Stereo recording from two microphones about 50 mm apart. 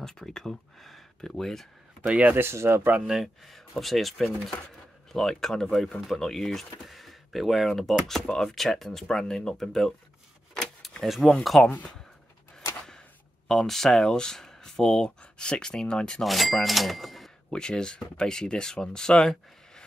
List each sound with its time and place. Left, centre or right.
0.0 s speech: centre
2.0 s speech: right
2.3 s speech: right
3.4 s speech: centre
11.0 s speech: centre
13.5 s speech: centre
16.2 s speech: centre
17.5 s speech: centre